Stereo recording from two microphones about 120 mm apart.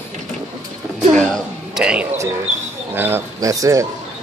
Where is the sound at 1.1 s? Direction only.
5° left (ahead or behind).